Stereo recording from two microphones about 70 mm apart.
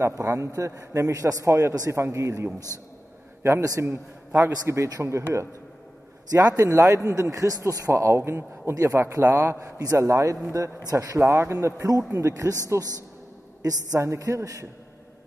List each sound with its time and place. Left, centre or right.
0.2 s a man's voice: right
3.6 s a man's voice: right
3.9 s a man's voice: right
5.0 s a man's voice: centre
6.3 s a man's voice: right
7.9 s a man's voice: right
9.6 s a man's voice: right